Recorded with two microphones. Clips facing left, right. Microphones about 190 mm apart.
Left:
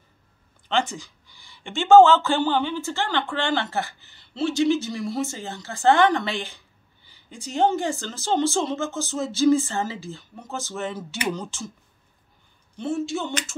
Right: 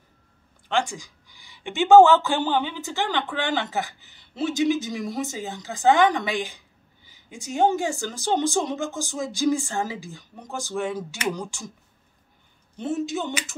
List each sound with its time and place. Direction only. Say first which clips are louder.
0.7 s speech: even; 10° right (ahead or behind)
12.7 s speech: even; 20° right (ahead or behind)